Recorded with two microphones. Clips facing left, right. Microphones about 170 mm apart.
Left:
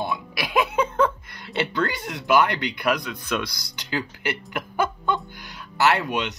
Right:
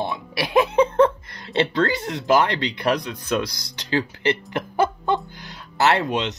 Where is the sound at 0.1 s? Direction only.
30° right (ahead or behind).